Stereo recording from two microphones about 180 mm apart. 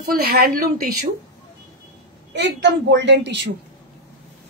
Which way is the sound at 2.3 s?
85° right.